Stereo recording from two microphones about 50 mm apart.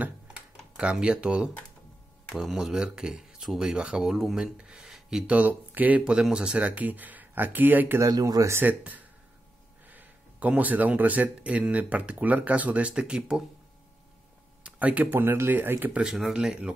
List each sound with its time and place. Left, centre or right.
0.7 s speech: right
2.3 s speech: centre
4.6 s speech: centre
4.8 s a sound: centre
5.2 s speech: right
6.3 s speech: right
8.0 s speech: right
8.6 s speech: right
9.8 s a sound: right
10.5 s speech: right
14.6 s a sound: right
15.0 s speech: right
16.0 s speech: centre